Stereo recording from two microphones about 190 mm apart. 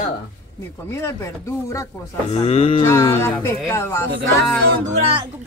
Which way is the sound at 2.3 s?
35° left (ahead or behind).